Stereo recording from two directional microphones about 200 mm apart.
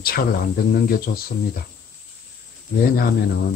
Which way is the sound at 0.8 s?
50° left (ahead or behind).